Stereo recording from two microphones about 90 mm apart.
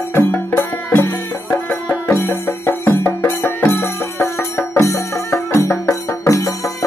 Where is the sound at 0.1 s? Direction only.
25° left (ahead or behind).